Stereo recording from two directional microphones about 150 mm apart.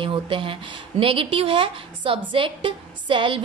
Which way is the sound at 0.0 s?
35° right (ahead or behind).